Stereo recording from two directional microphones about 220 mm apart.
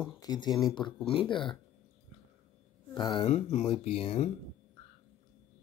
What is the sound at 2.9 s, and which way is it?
Speech, 20° left (ahead or behind).